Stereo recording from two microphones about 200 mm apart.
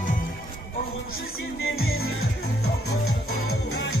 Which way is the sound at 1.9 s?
90° left.